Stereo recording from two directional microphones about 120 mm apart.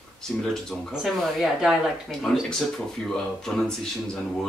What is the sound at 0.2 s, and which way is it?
Speech, 5° left (ahead or behind).